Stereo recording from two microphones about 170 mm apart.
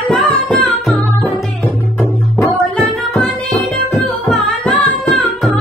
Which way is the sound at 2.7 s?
Centre (ahead or behind).